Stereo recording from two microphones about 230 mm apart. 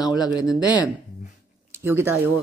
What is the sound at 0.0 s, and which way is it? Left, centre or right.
Speech, centre.